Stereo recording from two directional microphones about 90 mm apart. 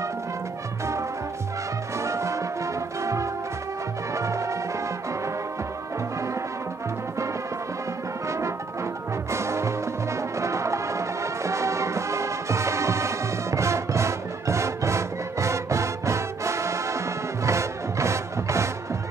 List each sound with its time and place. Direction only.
2.0 s brass instrument: 35° right (ahead or behind)
4.1 s music: 35° right (ahead or behind)
8.3 s brass instrument: 35° right (ahead or behind)
9.3 s music: 30° right (ahead or behind)